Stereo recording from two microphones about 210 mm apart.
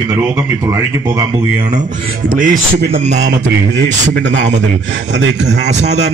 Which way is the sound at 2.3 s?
40° right (ahead or behind).